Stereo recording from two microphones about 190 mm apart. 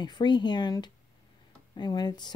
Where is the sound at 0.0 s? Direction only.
20° left (ahead or behind).